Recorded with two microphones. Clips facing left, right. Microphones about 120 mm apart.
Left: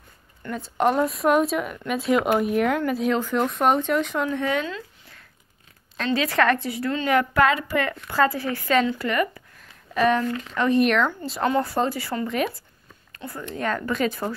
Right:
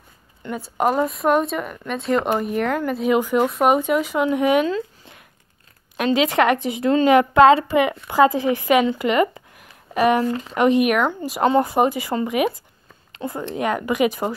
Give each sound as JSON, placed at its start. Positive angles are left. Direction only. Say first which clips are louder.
{"t": 0.4, "sound": "speech", "louder": "right 1 dB", "side_deg": -10}
{"t": 4.3, "sound": "a woman's voice", "louder": "right 7 dB", "side_deg": -15}
{"t": 5.9, "sound": "a woman's voice", "louder": "right 4 dB", "side_deg": -15}